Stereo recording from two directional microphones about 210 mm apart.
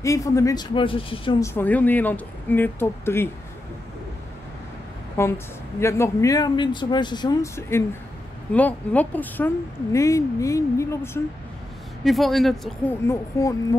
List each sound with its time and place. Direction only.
0.0 s speech: 15° left (ahead or behind)
1.4 s speech: 10° left (ahead or behind)
5.2 s speech: 10° left (ahead or behind)
12.0 s speech: centre (ahead or behind)
13.0 s speech: 15° left (ahead or behind)